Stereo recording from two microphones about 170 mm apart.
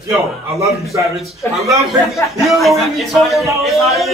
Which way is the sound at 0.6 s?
20° right (ahead or behind).